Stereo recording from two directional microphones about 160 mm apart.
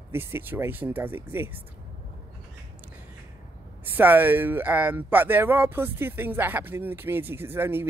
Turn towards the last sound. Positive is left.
turn(degrees=-15)  # may be behind; listen again after turning